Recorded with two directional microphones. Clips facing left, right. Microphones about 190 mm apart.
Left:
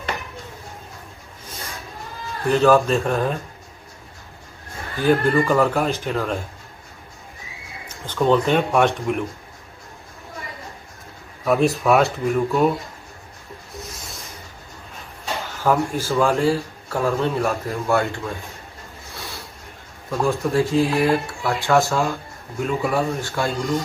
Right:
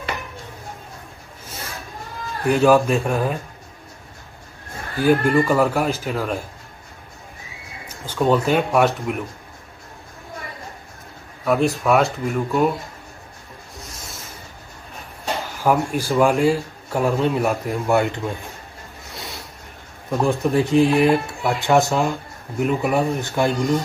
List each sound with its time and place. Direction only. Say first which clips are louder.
2.4 s speech: right 1 dB; 15° right (ahead or behind)
4.9 s speech: right 1 dB; 10° right (ahead or behind)
8.0 s speech: even; 10° right (ahead or behind)
11.4 s speech: left 1 dB; centre (ahead or behind)
13.7 s rub: left 4 dB; centre (ahead or behind)
15.6 s speech: right 1 dB; 15° right (ahead or behind)
20.1 s speech: right 2 dB; 15° right (ahead or behind)